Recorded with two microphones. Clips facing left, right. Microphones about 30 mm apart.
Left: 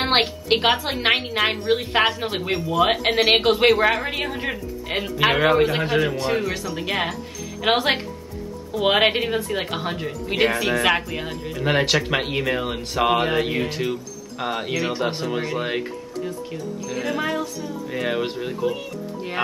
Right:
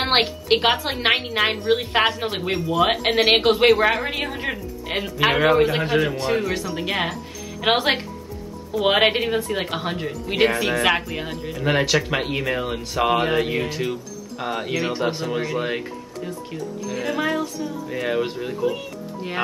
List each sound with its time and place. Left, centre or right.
0.0 s a woman's voice: centre
16.9 s a woman's voice: centre